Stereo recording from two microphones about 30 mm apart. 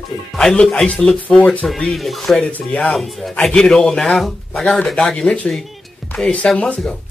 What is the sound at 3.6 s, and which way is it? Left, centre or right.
Speech, left.